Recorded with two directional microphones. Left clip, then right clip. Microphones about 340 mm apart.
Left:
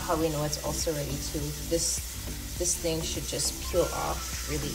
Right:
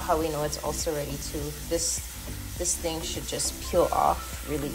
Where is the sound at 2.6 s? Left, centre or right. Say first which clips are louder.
Even; centre.